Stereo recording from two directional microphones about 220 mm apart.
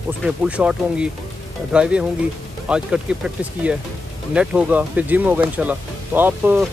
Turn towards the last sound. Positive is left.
turn(degrees=-10)  # may be behind; listen again after turning